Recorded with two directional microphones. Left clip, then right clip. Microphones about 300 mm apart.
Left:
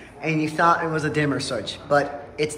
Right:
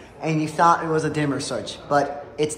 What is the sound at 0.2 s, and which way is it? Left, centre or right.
A man's voice, centre.